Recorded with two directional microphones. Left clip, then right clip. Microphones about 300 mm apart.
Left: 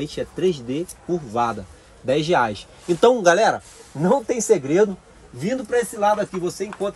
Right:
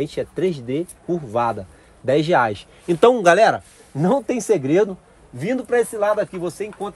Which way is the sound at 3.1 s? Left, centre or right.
Right.